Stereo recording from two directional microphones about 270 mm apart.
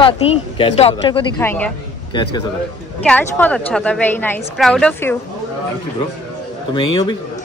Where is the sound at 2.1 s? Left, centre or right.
Centre.